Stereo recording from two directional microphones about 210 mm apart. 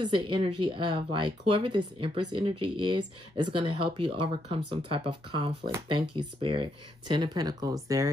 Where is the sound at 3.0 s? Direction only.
90° right.